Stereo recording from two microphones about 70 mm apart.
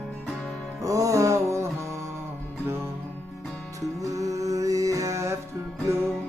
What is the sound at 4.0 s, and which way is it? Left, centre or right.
Music, right.